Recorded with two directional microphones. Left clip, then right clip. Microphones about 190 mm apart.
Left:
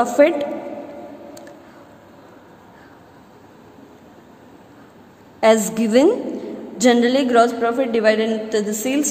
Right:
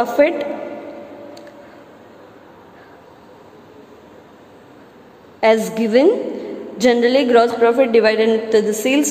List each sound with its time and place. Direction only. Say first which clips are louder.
0.0 s a woman's voice: even; 15° left (ahead or behind)
5.4 s a woman's voice: right 1 dB; 20° left (ahead or behind); by 9.0 s 5° left (ahead or behind)